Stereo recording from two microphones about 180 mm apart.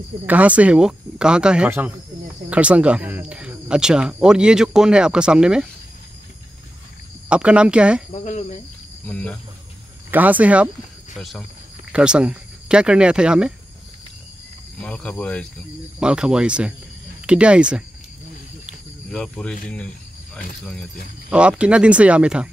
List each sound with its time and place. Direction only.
0.3 s speech: 10° right (ahead or behind)
7.2 s speech: 5° right (ahead or behind)
8.1 s speech: 40° left (ahead or behind)
9.0 s speech: 5° left (ahead or behind)
10.1 s speech: 10° right (ahead or behind)
14.8 s speech: 5° left (ahead or behind)
16.0 s speech: 5° right (ahead or behind)
18.7 s cricket: 5° left (ahead or behind)
20.3 s speech: 5° left (ahead or behind)
21.3 s speech: 5° right (ahead or behind)